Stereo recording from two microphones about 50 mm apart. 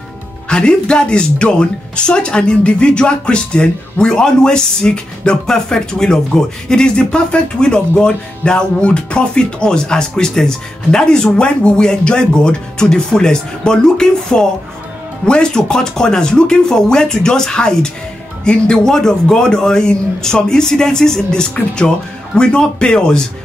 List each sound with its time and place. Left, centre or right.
0.5 s speech: centre